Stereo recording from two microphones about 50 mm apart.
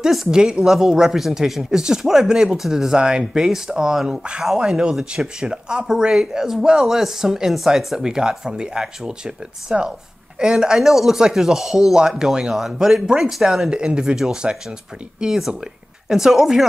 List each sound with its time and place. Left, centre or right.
0.0 s speech: centre
13.7 s speech: centre